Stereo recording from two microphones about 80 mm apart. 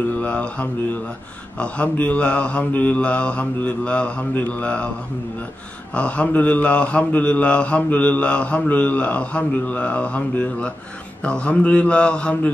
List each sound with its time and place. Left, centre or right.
0.2 s mantra: centre
5.9 s mantra: centre